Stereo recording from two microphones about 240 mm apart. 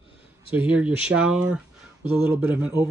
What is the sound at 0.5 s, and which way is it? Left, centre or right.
A man's voice, centre.